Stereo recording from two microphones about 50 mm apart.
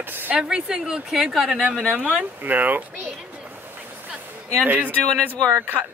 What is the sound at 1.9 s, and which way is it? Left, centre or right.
Speech, right.